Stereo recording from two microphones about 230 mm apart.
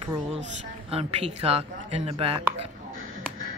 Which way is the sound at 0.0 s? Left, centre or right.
Right.